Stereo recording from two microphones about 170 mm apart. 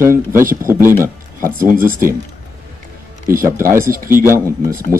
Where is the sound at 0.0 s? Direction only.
15° right (ahead or behind).